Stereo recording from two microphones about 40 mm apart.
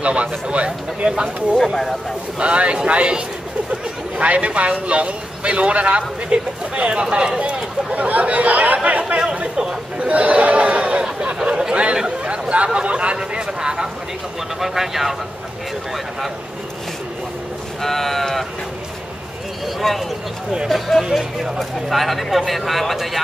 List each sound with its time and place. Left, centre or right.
0.0 s speech: right
12.2 s chatter: right
12.6 s speech: right
14.6 s speech: centre
17.8 s speech: centre
19.8 s speech: centre
21.1 s speech: centre